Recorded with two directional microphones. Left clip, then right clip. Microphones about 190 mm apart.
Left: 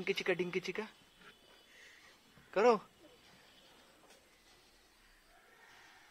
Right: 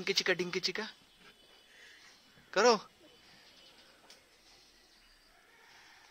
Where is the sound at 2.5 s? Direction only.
Centre (ahead or behind).